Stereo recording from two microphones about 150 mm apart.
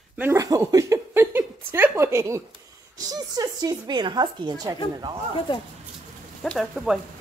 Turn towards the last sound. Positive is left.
turn(degrees=0)  # may be behind; listen again after turning